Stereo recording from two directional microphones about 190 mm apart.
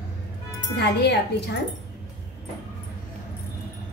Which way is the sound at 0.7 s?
60° left (ahead or behind).